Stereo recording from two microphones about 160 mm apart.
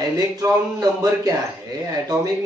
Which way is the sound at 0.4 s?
20° right (ahead or behind).